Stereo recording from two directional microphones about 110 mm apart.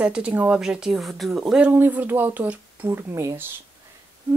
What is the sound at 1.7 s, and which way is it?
Speech, 20° right (ahead or behind).